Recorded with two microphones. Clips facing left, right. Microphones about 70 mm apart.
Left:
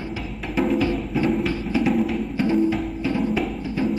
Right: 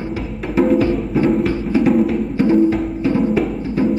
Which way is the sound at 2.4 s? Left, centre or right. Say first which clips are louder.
Right 7 dB; right.